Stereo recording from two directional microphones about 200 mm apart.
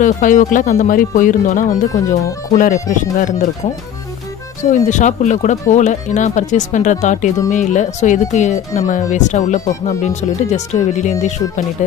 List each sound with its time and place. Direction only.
0.0 s speech: 40° left (ahead or behind)
4.6 s speech: 35° left (ahead or behind)